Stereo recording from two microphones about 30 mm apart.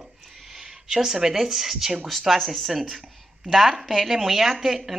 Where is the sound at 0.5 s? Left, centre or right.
Centre.